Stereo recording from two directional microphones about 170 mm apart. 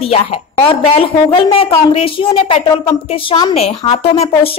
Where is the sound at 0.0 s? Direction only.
35° left (ahead or behind).